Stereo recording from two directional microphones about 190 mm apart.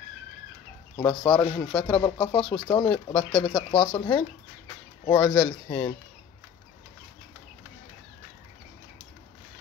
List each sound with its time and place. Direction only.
0.9 s speech: 20° left (ahead or behind)